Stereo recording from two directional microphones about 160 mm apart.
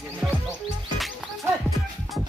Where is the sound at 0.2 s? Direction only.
20° right (ahead or behind).